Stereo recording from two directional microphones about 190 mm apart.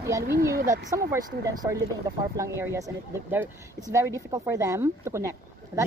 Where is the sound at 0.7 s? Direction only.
15° right (ahead or behind).